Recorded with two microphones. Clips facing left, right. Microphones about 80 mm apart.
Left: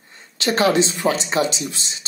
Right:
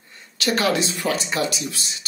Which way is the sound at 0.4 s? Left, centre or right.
Left.